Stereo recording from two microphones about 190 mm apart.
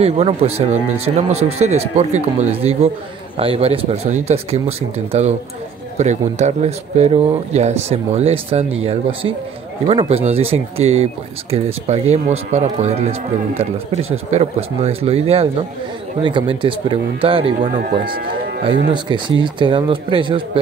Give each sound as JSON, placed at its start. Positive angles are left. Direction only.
{"t": 0.0, "sound": "speech", "side_deg": -35}
{"t": 9.8, "sound": "speech", "side_deg": -30}
{"t": 14.1, "sound": "speech", "side_deg": -35}